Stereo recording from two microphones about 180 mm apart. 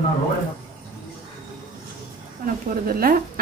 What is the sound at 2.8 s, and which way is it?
Speech, 55° right (ahead or behind).